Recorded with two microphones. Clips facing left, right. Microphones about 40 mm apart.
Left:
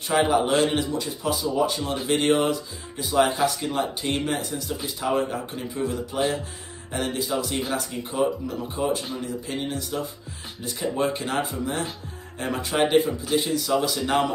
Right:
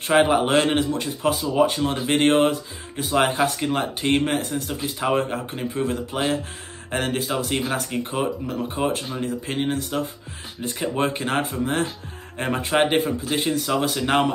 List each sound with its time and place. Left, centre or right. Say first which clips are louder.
0.1 s speech: right 3 dB; right